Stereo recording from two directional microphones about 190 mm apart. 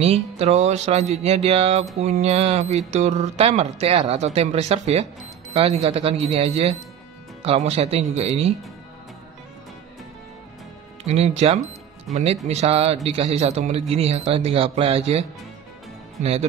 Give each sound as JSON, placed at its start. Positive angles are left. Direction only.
{"t": 0.0, "sound": "a man's voice", "side_deg": -35}
{"t": 11.1, "sound": "a man's voice", "side_deg": -35}